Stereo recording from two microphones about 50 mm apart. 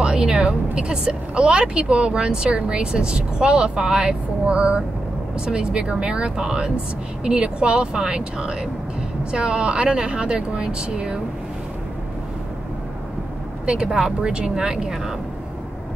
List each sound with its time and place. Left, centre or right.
0.0 s speech: centre
13.7 s a woman's voice: centre